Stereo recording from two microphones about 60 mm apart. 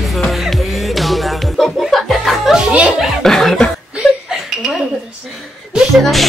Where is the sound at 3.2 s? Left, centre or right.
Centre.